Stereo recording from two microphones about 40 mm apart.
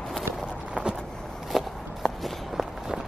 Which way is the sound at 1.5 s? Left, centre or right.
Centre.